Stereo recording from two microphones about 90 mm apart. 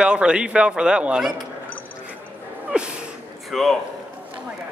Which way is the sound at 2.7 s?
10° right (ahead or behind).